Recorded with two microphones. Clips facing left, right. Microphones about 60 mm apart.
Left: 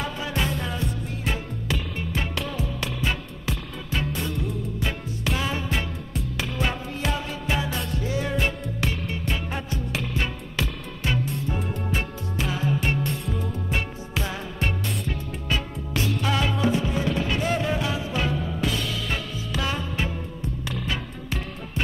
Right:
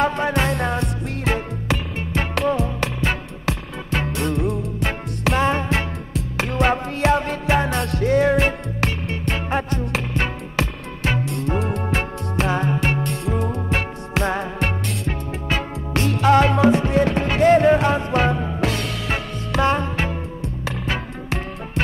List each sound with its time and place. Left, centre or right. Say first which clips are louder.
0.0 s music: right 9 dB; right
11.8 s music: right 5 dB; right
13.7 s music: right 5 dB; right